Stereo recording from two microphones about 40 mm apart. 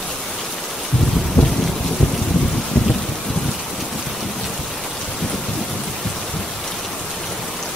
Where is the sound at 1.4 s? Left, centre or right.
Left.